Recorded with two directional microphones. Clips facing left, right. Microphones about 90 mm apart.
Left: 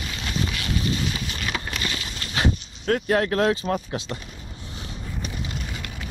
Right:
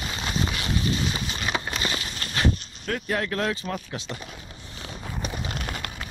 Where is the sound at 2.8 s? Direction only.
45° left (ahead or behind).